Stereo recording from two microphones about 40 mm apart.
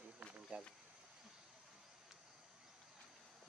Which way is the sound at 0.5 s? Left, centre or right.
Right.